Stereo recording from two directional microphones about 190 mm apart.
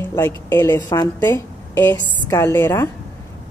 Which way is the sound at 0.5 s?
15° left (ahead or behind).